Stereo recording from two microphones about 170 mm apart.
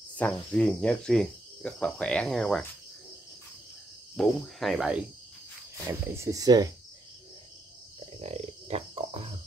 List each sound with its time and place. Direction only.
0.2 s speech: 5° left (ahead or behind)
4.2 s speech: centre (ahead or behind)
5.9 s speech: 15° right (ahead or behind)
8.0 s a sound: 40° right (ahead or behind)